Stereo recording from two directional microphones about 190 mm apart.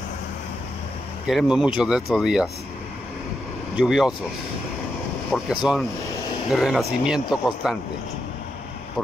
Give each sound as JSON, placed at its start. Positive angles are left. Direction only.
{"t": 1.2, "sound": "speech", "side_deg": -5}
{"t": 3.7, "sound": "speech", "side_deg": -5}
{"t": 5.3, "sound": "speech", "side_deg": 0}